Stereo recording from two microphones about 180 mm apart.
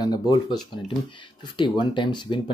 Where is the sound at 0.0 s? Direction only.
25° left (ahead or behind).